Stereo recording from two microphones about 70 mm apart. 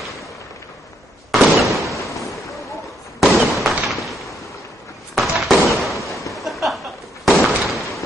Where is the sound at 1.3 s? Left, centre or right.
Centre.